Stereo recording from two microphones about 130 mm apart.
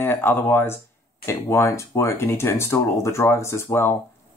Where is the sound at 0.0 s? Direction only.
15° left (ahead or behind).